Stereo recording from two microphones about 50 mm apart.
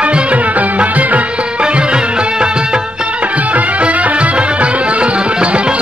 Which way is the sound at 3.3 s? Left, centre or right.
Right.